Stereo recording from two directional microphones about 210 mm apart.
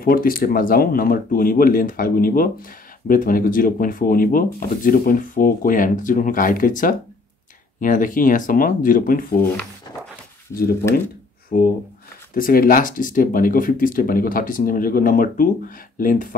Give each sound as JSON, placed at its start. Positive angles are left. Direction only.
{"t": 0.0, "sound": "speech", "side_deg": 45}
{"t": 9.9, "sound": "a sound", "side_deg": 20}
{"t": 12.4, "sound": "speech", "side_deg": 45}